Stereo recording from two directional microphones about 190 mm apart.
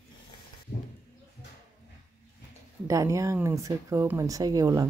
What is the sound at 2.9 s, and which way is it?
Speech, 15° right (ahead or behind).